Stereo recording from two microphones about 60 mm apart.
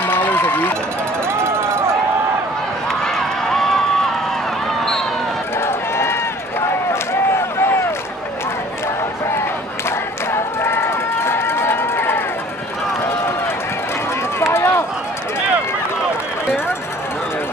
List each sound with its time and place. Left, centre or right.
0.0 s run: left
1.4 s run: right
2.9 s run: centre
5.7 s run: left
6.9 s a sound: left
9.8 s run: left
14.4 s run: left